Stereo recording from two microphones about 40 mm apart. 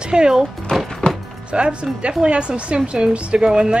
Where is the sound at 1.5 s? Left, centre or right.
Right.